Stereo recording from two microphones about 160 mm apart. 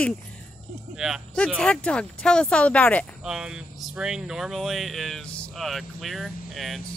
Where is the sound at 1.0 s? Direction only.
Centre (ahead or behind).